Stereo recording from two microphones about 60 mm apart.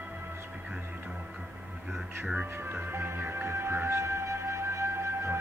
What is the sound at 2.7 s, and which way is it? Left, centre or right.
Music, right.